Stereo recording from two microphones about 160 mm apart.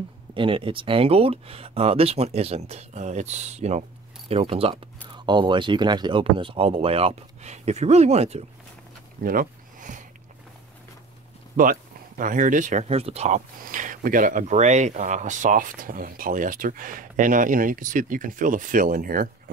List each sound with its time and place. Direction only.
0.3 s speech: 35° right (ahead or behind)
9.2 s a sound: 60° right (ahead or behind)
11.5 s speech: 60° right (ahead or behind)